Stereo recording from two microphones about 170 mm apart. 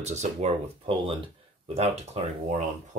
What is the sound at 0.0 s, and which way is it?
Speech, 40° right (ahead or behind).